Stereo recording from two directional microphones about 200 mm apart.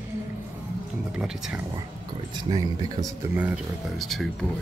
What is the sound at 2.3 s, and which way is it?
Speech, 20° right (ahead or behind).